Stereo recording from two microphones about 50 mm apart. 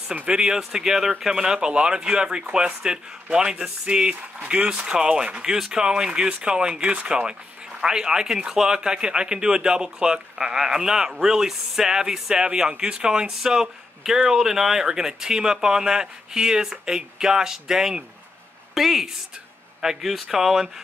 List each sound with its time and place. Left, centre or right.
0.1 s speech: right
0.6 s speech: centre